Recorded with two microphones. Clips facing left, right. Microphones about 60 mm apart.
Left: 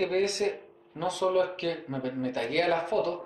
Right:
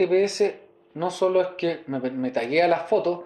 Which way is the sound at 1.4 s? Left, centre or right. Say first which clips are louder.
Right 5 dB; right.